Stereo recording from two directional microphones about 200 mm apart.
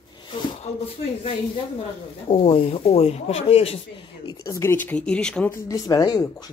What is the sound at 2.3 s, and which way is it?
Speech, 30° left (ahead or behind).